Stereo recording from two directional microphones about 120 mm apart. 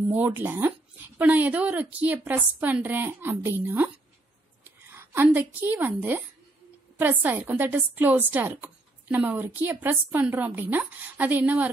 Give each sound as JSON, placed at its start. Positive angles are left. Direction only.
{"t": 0.1, "sound": "a woman's voice", "side_deg": -15}